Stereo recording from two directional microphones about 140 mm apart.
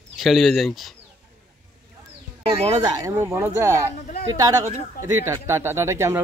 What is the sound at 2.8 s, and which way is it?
Speech, 25° right (ahead or behind).